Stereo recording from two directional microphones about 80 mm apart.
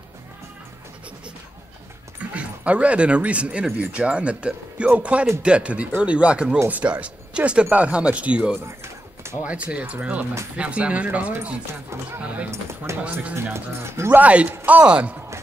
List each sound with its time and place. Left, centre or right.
2.3 s speech: centre
12.9 s speech: right; by 15.1 s centre